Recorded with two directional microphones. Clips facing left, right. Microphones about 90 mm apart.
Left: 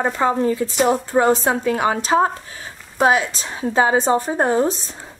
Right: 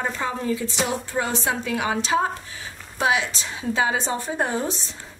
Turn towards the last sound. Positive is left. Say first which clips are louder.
# left 7 dB
turn(degrees=40)  # may be behind; listen again after turning